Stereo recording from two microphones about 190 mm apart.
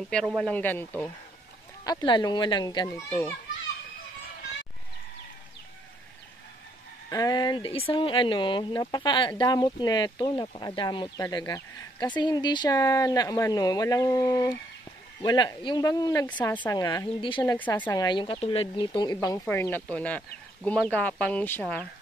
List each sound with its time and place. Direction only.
0.4 s speech: 10° left (ahead or behind)
1.9 s speech: 20° left (ahead or behind)
7.1 s speech: 20° left (ahead or behind)
16.3 s speech: 10° left (ahead or behind)
16.7 s speech: 20° left (ahead or behind)
17.4 s speech: 10° left (ahead or behind)
18.0 s speech: 25° left (ahead or behind)
19.2 s speech: 15° left (ahead or behind)